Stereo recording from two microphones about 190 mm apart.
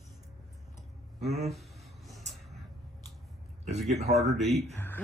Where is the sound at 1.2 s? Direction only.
35° right (ahead or behind).